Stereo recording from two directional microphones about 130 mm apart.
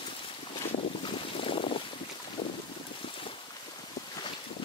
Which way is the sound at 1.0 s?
45° left (ahead or behind).